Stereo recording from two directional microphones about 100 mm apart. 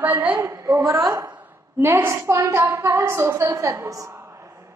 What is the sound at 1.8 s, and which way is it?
A woman's voice, 25° right (ahead or behind).